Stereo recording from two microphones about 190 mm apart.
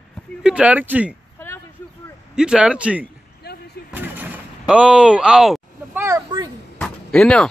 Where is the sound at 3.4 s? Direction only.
60° left (ahead or behind).